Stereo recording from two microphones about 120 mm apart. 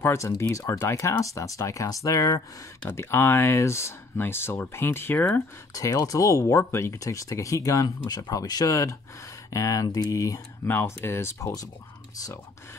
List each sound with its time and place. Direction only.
0.0 s speech: 20° left (ahead or behind)
5.7 s speech: 30° left (ahead or behind)